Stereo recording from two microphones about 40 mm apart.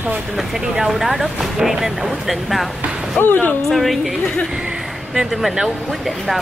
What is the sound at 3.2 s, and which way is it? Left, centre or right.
Speech, left.